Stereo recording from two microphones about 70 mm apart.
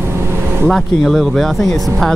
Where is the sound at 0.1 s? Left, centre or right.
Right.